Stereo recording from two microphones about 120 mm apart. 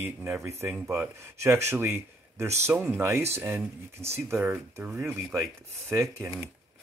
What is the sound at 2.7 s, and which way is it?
Speech, 10° right (ahead or behind).